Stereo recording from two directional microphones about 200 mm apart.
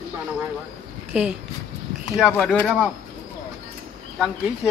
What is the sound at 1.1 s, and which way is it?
Speech, 5° right (ahead or behind).